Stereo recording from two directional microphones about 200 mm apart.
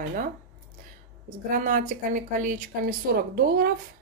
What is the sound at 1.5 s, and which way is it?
A woman's voice, 40° right (ahead or behind).